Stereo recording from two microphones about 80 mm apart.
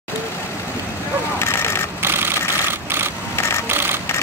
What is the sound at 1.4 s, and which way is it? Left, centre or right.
Vehicle, left.